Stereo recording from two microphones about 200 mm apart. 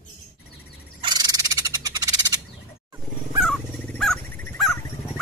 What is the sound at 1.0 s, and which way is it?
Frog, 20° right (ahead or behind).